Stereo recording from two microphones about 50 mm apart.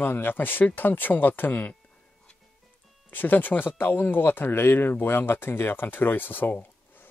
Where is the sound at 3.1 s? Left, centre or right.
Left.